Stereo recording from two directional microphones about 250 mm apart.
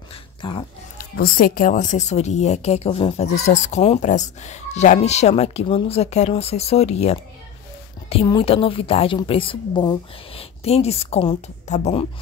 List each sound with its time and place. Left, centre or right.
0.1 s dog: centre
0.9 s a woman's voice: left